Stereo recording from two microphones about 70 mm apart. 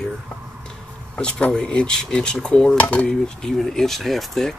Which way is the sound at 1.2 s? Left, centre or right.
Centre.